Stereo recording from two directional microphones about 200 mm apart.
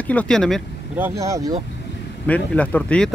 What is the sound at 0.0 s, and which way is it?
Speech, 5° left (ahead or behind).